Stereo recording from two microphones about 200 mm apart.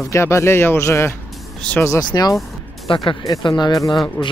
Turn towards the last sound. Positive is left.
turn(degrees=20)  # may be behind; listen again after turning